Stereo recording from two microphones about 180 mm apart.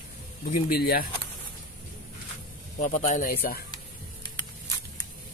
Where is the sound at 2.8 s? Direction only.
45° left (ahead or behind).